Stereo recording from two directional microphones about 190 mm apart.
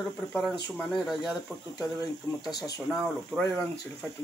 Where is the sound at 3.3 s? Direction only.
Centre (ahead or behind).